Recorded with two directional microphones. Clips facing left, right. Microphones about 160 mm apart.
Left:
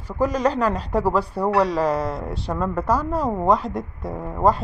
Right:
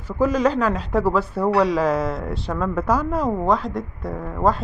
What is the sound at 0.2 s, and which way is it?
Speech, 5° right (ahead or behind).